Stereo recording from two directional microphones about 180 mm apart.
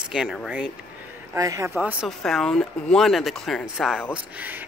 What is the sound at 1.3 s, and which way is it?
Speech, 15° right (ahead or behind).